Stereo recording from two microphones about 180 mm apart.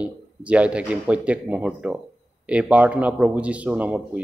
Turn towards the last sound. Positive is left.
turn(degrees=-5)  # may be behind; listen again after turning